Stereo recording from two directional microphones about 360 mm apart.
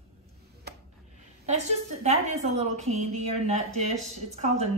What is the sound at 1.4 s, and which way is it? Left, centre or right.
A woman's voice, centre.